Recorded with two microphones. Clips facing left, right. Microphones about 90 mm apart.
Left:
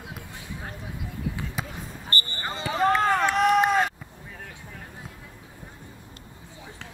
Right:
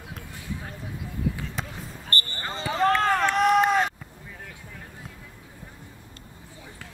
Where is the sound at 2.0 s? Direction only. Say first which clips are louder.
Even; 15° left (ahead or behind).